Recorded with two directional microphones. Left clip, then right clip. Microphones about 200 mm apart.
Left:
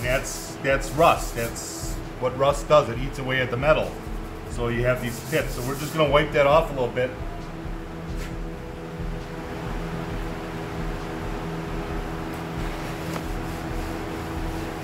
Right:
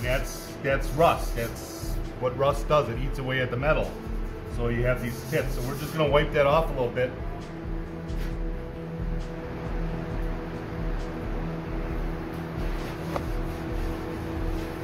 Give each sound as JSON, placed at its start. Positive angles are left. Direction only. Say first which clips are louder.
{"t": 0.7, "sound": "a man's voice", "louder": "left 3 dB", "side_deg": 0}